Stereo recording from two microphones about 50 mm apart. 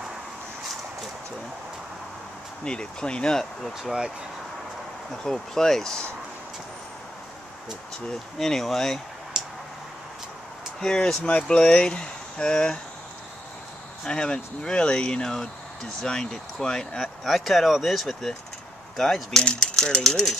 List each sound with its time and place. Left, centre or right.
2.6 s speech: centre
3.3 s speech: centre
5.1 s speech: centre
8.4 s speech: centre
9.3 s tick: centre
10.8 s speech: centre
11.5 s speech: left
14.0 s speech: centre
17.2 s speech: centre
19.3 s speech: centre